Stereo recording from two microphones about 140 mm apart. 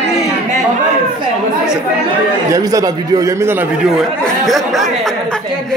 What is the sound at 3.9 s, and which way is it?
Speech, centre (ahead or behind).